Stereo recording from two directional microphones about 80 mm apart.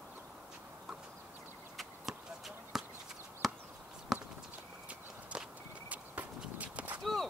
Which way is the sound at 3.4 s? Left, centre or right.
Centre.